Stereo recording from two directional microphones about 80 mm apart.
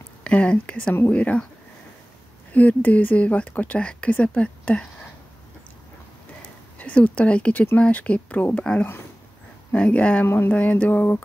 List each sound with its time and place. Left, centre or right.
0.2 s speech: centre
2.5 s speech: centre
6.8 s speech: centre
9.7 s speech: centre
10.2 s a sound: left
10.5 s speech: centre